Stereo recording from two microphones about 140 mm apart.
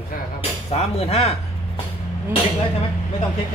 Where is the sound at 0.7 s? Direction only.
45° left (ahead or behind).